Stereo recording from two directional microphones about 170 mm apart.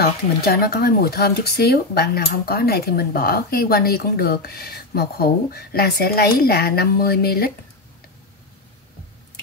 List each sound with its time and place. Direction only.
0.0 s speech: 65° left (ahead or behind)